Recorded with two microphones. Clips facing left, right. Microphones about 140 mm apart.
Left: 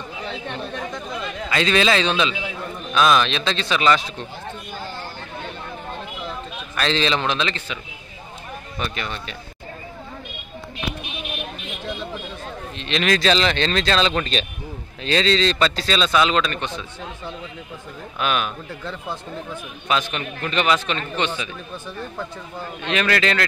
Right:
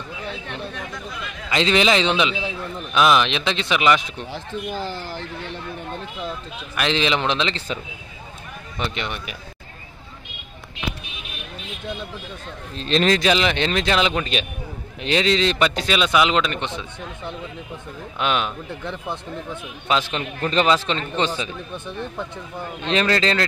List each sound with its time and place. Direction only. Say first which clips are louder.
1.5 s speech: right 1 dB; 20° right (ahead or behind)
4.3 s speech: right 5 dB; 90° right
6.8 s speech: even; 15° right (ahead or behind)
8.7 s speech: right 2 dB; 20° right (ahead or behind)
12.7 s speech: right 4 dB; 35° right (ahead or behind)
13.1 s speech: even; 15° right (ahead or behind)
22.8 s speech: right 1 dB; 30° right (ahead or behind)